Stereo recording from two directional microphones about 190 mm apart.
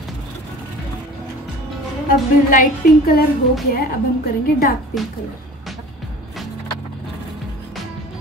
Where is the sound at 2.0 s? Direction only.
45° left (ahead or behind).